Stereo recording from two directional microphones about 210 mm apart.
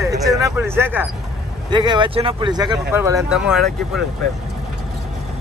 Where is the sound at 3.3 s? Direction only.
5° right (ahead or behind).